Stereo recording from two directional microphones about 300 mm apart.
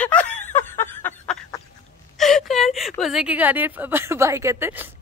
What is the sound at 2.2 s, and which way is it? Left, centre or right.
Speech, centre.